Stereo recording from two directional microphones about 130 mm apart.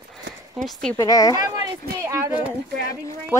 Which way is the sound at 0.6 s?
Centre (ahead or behind).